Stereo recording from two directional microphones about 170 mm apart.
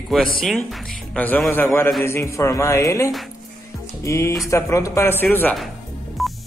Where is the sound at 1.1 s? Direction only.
10° left (ahead or behind).